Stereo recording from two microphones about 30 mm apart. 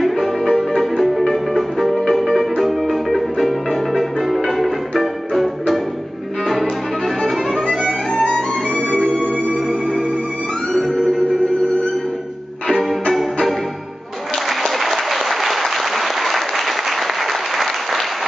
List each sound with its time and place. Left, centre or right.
0.0 s music: centre
7.7 s music: centre
8.2 s music: left
10.7 s music: centre
12.6 s music: centre
14.3 s applause: centre